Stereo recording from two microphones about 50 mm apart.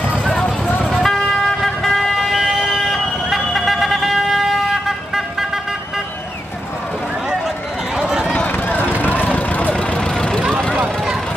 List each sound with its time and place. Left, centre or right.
0.2 s vehicle: centre
2.8 s siren: centre
7.4 s a sound: centre
8.5 s vehicle: left
9.3 s vehicle: left
9.9 s vehicle: centre